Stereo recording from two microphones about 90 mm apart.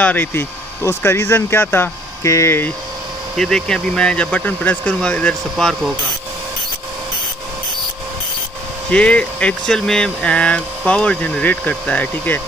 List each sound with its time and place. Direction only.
0.0 s speech: 20° left (ahead or behind)
3.3 s speech: 5° left (ahead or behind)
8.9 s speech: 15° left (ahead or behind)